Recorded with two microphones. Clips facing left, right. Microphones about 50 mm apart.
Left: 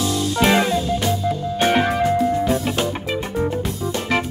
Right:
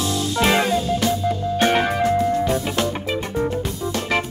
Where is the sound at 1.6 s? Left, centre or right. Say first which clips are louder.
Left 1 dB; centre.